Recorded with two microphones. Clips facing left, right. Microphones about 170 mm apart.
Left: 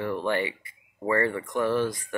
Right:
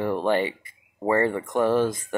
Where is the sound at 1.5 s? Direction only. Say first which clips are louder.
Right 5 dB; 25° right (ahead or behind).